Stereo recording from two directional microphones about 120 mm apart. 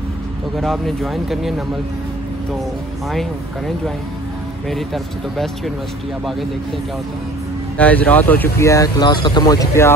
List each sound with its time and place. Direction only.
0.6 s speech: centre (ahead or behind)
3.1 s speech: centre (ahead or behind)
7.7 s speech: 10° left (ahead or behind)